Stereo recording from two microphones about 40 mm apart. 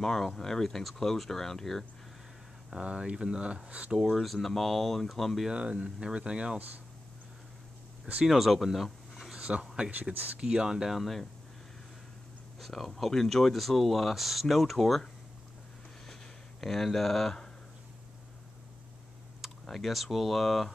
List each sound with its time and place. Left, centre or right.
0.0 s speech: centre
2.7 s speech: centre
4.0 s speech: centre
5.5 s speech: right
8.3 s speech: centre
9.4 s speech: right
10.1 s speech: right
10.4 s speech: centre
10.9 s speech: centre
12.5 s speech: centre
16.6 s speech: centre
19.7 s speech: centre